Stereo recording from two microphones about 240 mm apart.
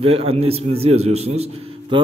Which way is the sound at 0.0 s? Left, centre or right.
Right.